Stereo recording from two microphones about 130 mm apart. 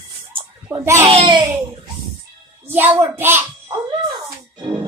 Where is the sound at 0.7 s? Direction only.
25° right (ahead or behind).